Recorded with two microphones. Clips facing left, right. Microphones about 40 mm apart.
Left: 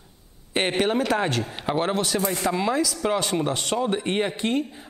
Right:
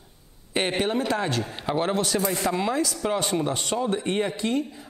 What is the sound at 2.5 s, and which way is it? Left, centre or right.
Speech, left.